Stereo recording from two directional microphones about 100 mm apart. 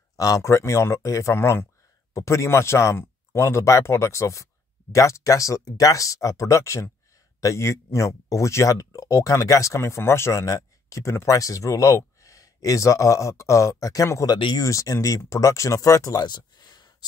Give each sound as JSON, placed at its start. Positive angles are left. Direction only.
{"t": 0.1, "sound": "speech", "side_deg": 35}
{"t": 14.3, "sound": "speech", "side_deg": 45}
{"t": 14.7, "sound": "speech", "side_deg": 35}